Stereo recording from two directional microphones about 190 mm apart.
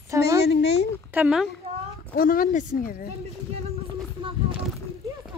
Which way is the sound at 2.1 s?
50° left (ahead or behind).